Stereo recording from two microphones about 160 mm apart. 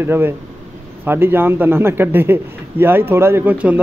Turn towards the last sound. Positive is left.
turn(degrees=-10)  # may be behind; listen again after turning